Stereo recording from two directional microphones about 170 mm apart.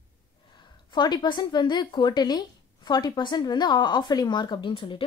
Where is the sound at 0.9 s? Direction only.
25° left (ahead or behind).